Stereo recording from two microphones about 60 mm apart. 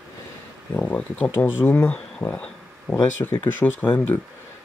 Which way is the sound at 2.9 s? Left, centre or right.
Centre.